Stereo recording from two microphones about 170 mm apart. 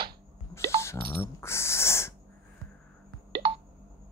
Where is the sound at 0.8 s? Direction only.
15° left (ahead or behind).